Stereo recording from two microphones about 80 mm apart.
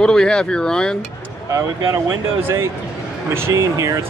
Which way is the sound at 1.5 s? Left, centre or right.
Right.